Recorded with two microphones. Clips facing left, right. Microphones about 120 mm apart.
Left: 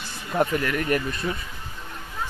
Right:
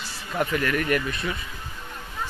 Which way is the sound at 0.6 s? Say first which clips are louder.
Even; 20° left (ahead or behind).